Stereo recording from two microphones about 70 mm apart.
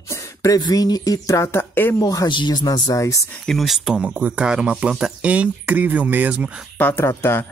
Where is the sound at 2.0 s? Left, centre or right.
Left.